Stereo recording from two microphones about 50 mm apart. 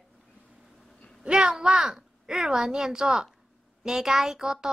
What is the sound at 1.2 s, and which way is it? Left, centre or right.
A child's voice, centre.